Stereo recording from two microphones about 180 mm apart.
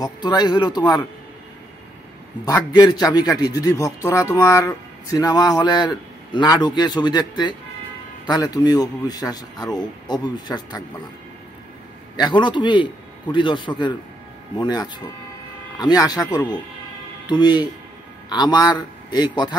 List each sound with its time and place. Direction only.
0.0 s a man's voice: 25° left (ahead or behind)
2.4 s a man's voice: 20° left (ahead or behind)
12.2 s a man's voice: 25° left (ahead or behind)